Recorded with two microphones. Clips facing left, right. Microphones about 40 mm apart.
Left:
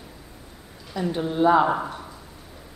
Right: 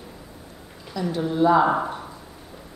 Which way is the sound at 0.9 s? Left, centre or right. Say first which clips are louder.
Right 1 dB; left.